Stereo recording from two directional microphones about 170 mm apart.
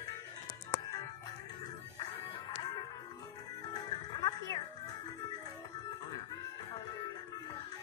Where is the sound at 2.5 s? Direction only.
25° left (ahead or behind).